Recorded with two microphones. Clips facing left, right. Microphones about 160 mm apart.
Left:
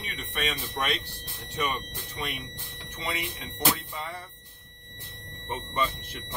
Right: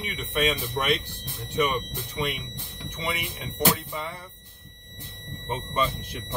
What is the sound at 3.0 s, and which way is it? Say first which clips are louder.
Speech: right 2 dB; 15° right (ahead or behind).